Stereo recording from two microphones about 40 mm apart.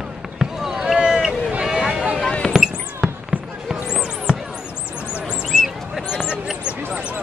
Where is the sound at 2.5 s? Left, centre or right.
Centre.